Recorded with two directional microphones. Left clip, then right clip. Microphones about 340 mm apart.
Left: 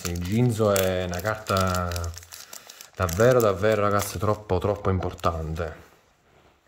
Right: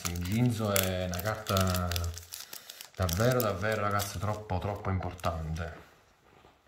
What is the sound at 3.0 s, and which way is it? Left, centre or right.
Speech, centre.